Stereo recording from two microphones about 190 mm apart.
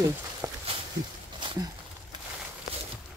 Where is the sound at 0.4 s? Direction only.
20° right (ahead or behind).